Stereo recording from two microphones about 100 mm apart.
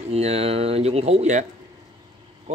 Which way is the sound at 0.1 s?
90° right.